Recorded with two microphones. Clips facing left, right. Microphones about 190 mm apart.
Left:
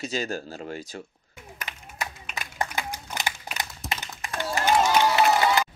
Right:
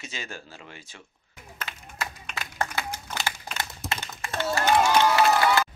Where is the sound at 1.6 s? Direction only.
15° left (ahead or behind).